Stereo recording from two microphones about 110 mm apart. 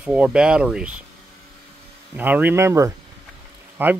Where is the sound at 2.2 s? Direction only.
15° right (ahead or behind).